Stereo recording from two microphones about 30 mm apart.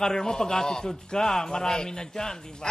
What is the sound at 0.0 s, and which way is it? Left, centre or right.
A man's voice, centre.